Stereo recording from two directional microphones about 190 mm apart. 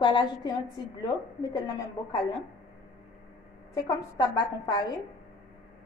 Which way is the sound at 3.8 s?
20° left (ahead or behind).